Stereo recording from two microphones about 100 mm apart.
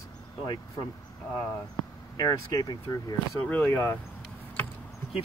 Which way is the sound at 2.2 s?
40° left (ahead or behind).